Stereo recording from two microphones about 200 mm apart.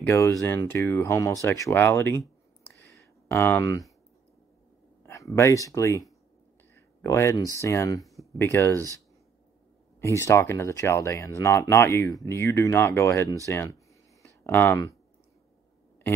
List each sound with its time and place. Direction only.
0.0 s speech: 10° left (ahead or behind)
2.9 s a sound: 10° left (ahead or behind)
5.0 s speech: 15° left (ahead or behind)
6.7 s a sound: 15° left (ahead or behind)
7.6 s speech: 15° left (ahead or behind)
9.9 s speech: 15° left (ahead or behind)